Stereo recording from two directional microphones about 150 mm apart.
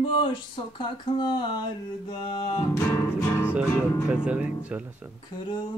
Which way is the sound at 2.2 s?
30° left (ahead or behind).